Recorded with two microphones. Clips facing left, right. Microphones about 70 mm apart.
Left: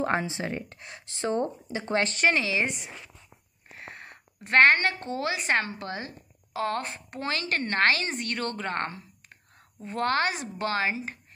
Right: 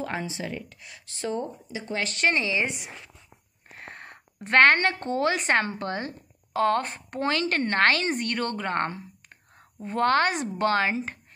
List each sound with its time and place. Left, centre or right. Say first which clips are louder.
0.3 s speech: left 1 dB; left
1.3 s speech: left 4 dB; left
2.6 s speech: even; centre
3.8 s a woman's voice: right 1 dB; right
8.0 s a woman's voice: right 4 dB; right